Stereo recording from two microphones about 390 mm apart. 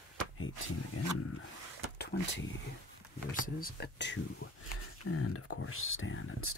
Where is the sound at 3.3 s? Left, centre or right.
Left.